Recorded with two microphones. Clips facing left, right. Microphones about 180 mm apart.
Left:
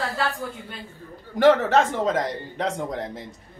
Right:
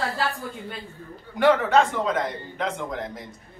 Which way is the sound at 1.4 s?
40° left (ahead or behind).